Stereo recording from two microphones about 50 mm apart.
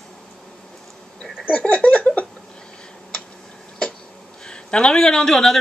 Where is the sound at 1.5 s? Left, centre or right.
Left.